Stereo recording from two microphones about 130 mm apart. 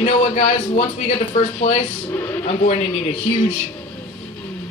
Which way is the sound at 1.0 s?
55° left (ahead or behind).